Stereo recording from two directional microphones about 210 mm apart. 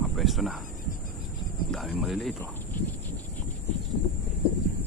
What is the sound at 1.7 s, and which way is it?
Speech, centre (ahead or behind).